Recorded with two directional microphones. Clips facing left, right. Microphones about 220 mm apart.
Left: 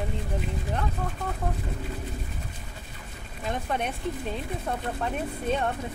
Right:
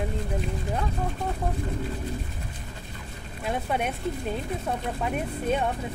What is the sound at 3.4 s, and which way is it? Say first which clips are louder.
Speech: right 2 dB; 5° right (ahead or behind).